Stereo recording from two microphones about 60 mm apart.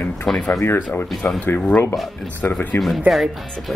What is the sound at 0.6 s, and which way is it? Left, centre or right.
Speech, left.